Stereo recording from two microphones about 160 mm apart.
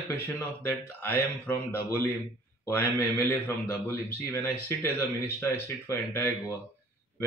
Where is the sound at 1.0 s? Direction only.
15° left (ahead or behind).